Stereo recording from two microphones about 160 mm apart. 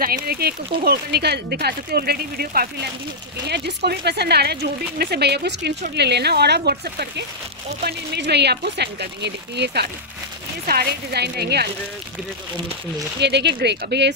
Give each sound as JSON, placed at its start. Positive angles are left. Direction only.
{"t": 0.0, "sound": "speech", "side_deg": -75}
{"t": 3.4, "sound": "speech", "side_deg": -90}
{"t": 7.8, "sound": "speech", "side_deg": -90}
{"t": 13.2, "sound": "speech", "side_deg": -90}